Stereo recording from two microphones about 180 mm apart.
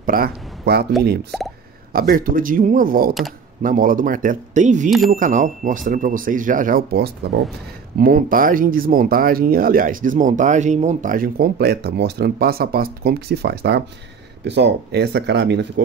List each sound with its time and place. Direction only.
0.0 s speech: 55° right (ahead or behind)
1.3 s speech: centre (ahead or behind)
1.9 s speech: 55° right (ahead or behind)
4.8 s speech: centre (ahead or behind)
5.1 s speech: 45° right (ahead or behind); by 15.8 s 70° right (ahead or behind)